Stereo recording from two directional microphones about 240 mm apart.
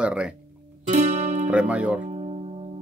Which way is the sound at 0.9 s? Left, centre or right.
Right.